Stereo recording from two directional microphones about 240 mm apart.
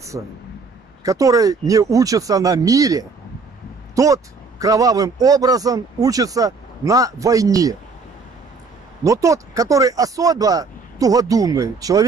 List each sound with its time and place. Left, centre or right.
0.1 s speech: centre
9.0 s speech: centre